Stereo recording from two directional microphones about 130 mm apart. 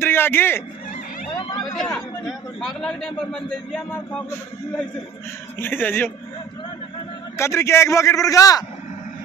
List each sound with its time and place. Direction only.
0.0 s speech: 15° left (ahead or behind)
1.8 s speech: 5° left (ahead or behind)
5.6 s speech: 15° left (ahead or behind)
7.3 s a man's voice: 20° left (ahead or behind)